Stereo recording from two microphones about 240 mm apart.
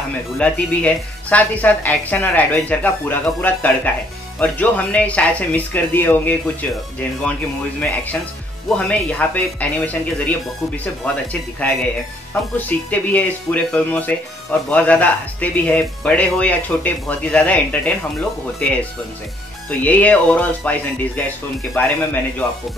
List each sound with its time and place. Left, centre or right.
0.4 s a woman's voice: centre
7.8 s a woman's voice: centre
12.5 s a woman's voice: centre
19.8 s a woman's voice: centre